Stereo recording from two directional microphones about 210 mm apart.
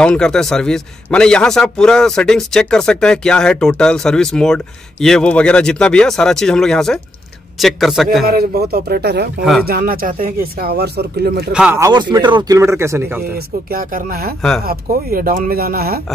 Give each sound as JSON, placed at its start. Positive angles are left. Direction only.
{"t": 0.0, "sound": "a man's voice", "side_deg": 5}
{"t": 8.3, "sound": "speech", "side_deg": -45}
{"t": 9.4, "sound": "a man's voice", "side_deg": 0}
{"t": 9.7, "sound": "speech", "side_deg": -45}
{"t": 11.5, "sound": "speech", "side_deg": -10}
{"t": 13.2, "sound": "speech", "side_deg": -45}